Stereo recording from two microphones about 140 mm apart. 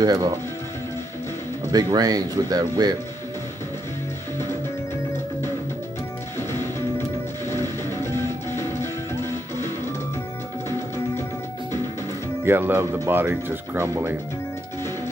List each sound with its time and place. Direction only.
0.0 s speech: 25° right (ahead or behind)
1.7 s speech: 30° right (ahead or behind)
7.4 s music: 20° left (ahead or behind)
12.4 s speech: 15° right (ahead or behind)